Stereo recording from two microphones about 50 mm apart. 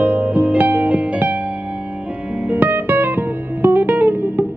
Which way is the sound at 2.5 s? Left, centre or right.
Right.